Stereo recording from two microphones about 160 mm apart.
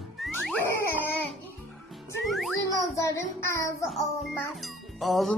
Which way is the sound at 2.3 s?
Centre (ahead or behind).